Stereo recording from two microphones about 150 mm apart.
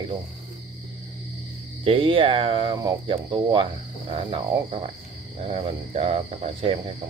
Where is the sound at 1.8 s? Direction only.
35° right (ahead or behind).